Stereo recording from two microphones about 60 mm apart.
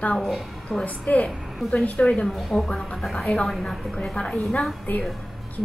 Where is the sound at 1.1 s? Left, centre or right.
Left.